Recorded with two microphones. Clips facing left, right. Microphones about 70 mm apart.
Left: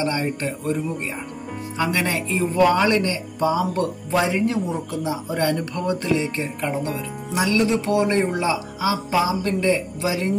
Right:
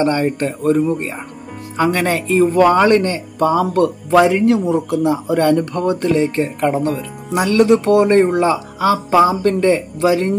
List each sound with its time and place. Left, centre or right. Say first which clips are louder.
0.0 s a man's voice: right 7 dB; right